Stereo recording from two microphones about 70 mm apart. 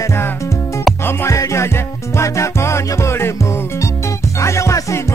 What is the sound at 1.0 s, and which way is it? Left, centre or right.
Music, left.